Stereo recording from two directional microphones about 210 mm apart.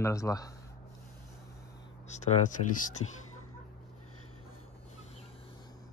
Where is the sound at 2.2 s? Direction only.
35° left (ahead or behind).